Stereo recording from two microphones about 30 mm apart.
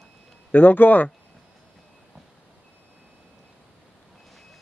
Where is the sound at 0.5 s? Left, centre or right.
Left.